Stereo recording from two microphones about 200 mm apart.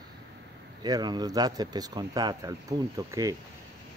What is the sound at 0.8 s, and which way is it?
Speech, 20° right (ahead or behind).